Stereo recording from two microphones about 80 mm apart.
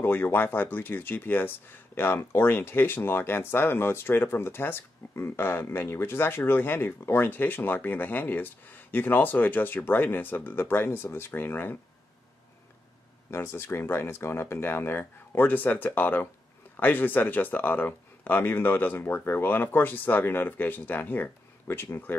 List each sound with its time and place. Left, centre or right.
0.0 s speech: left
13.3 s speech: left